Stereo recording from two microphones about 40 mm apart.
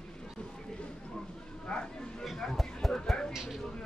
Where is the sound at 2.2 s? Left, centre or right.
Centre.